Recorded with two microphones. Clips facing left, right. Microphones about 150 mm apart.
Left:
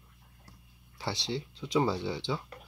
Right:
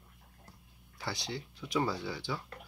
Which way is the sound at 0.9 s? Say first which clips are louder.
Left 4 dB; 25° left (ahead or behind).